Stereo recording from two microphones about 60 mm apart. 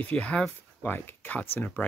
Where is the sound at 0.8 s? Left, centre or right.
Left.